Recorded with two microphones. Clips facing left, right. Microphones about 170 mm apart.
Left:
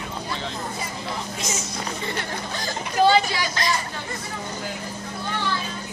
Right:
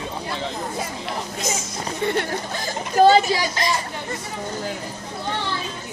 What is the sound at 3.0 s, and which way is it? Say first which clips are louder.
Speech: right 4 dB; 40° right (ahead or behind).